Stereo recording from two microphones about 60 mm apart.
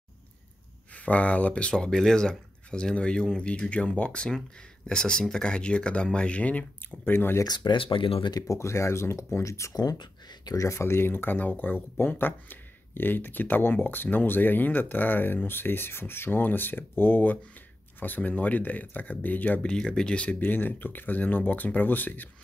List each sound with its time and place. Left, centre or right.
0.9 s speech: left
7.1 s speech: left
7.6 s speech: left
8.5 s speech: left
19.6 s speech: centre; by 22.3 s left